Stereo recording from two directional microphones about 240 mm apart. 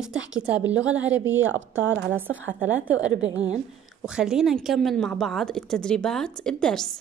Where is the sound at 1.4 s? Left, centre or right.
Right.